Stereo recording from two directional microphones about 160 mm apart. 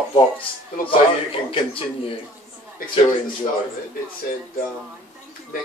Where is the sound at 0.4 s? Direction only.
35° left (ahead or behind).